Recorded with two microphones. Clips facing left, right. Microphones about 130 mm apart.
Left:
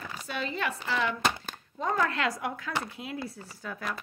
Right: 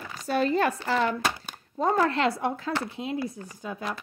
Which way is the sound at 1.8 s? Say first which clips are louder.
Right 5 dB; 30° right (ahead or behind).